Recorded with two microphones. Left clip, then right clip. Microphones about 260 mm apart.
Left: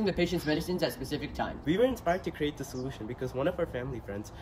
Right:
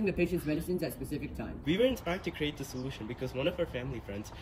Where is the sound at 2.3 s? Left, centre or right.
Left.